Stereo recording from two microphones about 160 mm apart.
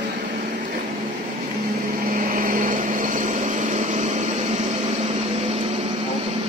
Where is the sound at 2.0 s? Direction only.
60° right (ahead or behind); by 5.9 s 40° right (ahead or behind).